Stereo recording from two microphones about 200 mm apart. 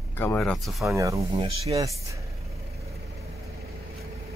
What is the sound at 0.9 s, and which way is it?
Speech, 15° right (ahead or behind).